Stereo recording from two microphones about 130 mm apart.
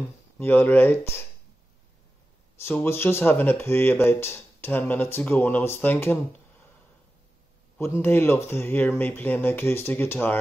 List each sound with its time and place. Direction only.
0.4 s speech: 15° left (ahead or behind)
2.6 s speech: 15° left (ahead or behind)
7.7 s speech: 20° left (ahead or behind)